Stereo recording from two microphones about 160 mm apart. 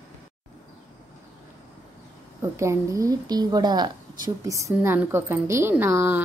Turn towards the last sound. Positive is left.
turn(degrees=-15)  # may be behind; listen again after turning